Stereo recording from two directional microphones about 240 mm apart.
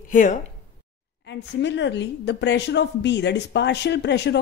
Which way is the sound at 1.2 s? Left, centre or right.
Left.